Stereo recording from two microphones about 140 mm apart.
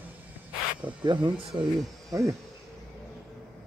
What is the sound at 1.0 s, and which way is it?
Speech, 30° right (ahead or behind).